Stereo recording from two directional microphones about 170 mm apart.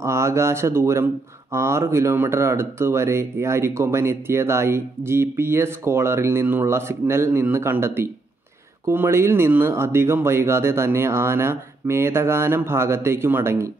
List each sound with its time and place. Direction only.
0.0 s speech: 15° right (ahead or behind)